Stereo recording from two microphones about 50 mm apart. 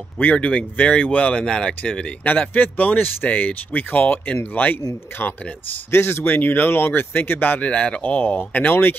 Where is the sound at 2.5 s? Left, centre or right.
Left.